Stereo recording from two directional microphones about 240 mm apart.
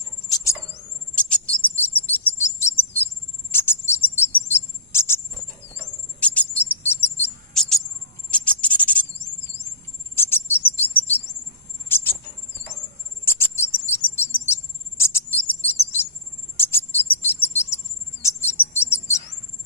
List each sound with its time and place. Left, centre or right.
0.3 s bird: centre
2.0 s chirp: centre
3.5 s cricket: centre
4.6 s music: centre
6.1 s a sound: centre
7.2 s owl: centre
8.3 s a sound: centre
10.1 s bird vocalization: centre
11.9 s a sound: centre
13.2 s bird: centre
15.0 s bird vocalization: centre
16.5 s cricket: centre
18.2 s bird vocalization: centre